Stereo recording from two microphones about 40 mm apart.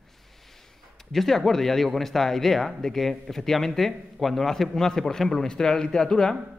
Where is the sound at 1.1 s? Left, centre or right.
Centre.